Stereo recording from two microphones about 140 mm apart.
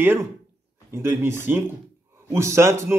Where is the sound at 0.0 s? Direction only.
15° right (ahead or behind).